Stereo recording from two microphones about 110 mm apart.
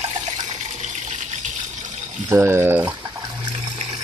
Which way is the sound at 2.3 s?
20° right (ahead or behind).